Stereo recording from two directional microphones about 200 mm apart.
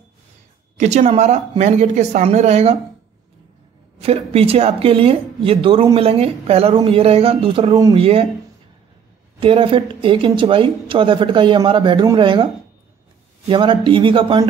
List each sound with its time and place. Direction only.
0.7 s speech: 35° right (ahead or behind)
4.0 s speech: 30° right (ahead or behind)
9.4 s speech: 25° right (ahead or behind)
13.5 s speech: 25° right (ahead or behind)